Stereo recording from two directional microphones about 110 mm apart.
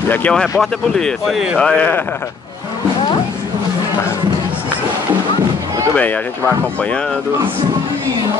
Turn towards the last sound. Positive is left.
turn(degrees=15)  # may be behind; listen again after turning